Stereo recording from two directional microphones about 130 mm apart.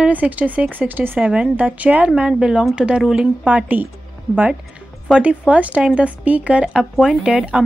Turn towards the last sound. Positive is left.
turn(degrees=-5)  # may be behind; listen again after turning